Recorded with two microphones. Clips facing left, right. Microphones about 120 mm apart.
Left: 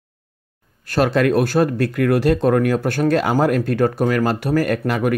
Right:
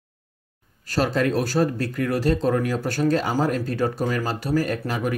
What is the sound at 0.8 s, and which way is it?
Speech, 65° left (ahead or behind).